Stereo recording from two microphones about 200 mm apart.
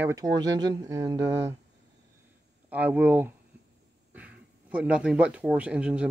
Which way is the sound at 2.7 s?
10° right (ahead or behind).